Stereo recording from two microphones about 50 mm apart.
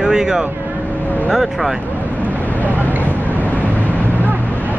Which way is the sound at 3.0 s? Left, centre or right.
Left.